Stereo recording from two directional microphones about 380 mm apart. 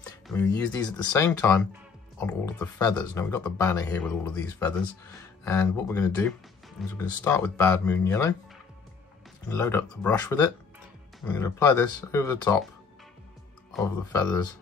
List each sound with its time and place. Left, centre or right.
0.3 s speech: centre
9.5 s speech: centre
13.7 s speech: centre